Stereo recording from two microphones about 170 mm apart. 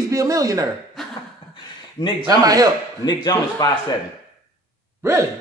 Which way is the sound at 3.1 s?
20° left (ahead or behind).